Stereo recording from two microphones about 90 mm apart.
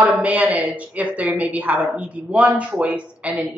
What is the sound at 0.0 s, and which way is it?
Speech, 15° right (ahead or behind).